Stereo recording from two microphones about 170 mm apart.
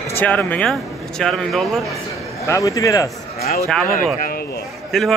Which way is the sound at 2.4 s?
20° left (ahead or behind).